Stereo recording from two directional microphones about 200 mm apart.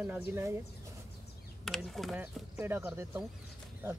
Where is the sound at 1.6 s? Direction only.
Centre (ahead or behind).